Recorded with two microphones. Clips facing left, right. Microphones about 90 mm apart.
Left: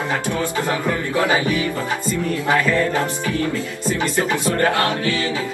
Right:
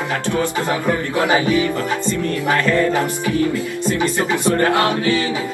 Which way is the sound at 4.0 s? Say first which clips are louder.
Right 1 dB; 20° right (ahead or behind).